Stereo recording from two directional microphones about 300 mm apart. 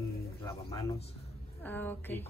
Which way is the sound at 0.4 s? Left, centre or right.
Centre.